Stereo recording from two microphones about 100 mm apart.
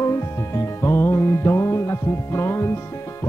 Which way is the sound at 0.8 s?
25° left (ahead or behind).